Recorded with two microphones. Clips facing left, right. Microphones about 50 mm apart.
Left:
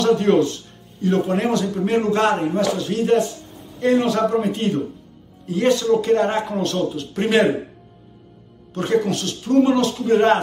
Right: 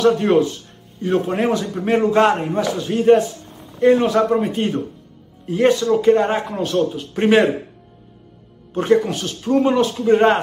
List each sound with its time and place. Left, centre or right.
0.2 s a man's voice: centre
8.8 s a man's voice: centre